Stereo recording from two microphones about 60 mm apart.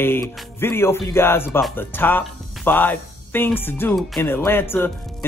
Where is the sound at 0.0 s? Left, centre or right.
Left.